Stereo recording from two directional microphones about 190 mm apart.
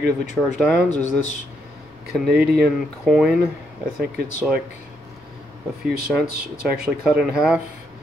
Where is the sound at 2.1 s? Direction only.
5° right (ahead or behind).